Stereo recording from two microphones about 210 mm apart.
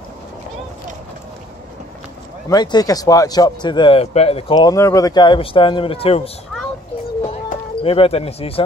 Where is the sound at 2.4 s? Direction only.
20° left (ahead or behind).